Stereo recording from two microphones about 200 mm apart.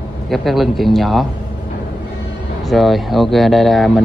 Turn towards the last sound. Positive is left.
turn(degrees=0)  # may be behind; listen again after turning